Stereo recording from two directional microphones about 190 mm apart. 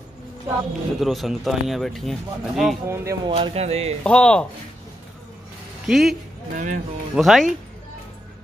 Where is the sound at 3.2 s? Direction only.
30° right (ahead or behind).